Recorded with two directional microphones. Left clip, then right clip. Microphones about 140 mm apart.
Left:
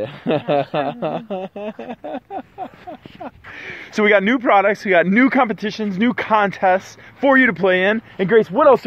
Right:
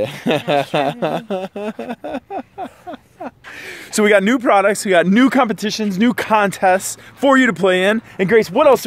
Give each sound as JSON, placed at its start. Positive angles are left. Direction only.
{"t": 0.0, "sound": "speech", "side_deg": -55}